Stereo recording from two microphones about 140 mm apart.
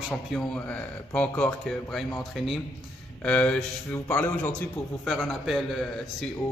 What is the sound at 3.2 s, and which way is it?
Speech, 10° left (ahead or behind).